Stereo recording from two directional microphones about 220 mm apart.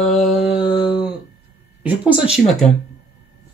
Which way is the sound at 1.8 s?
5° right (ahead or behind).